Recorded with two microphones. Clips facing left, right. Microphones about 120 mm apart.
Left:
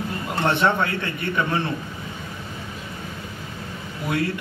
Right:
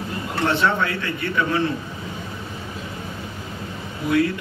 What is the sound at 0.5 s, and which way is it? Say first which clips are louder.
A man's voice: left 1 dB; 20° left (ahead or behind).